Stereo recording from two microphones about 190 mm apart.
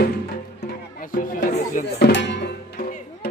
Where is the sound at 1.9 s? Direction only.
65° left (ahead or behind).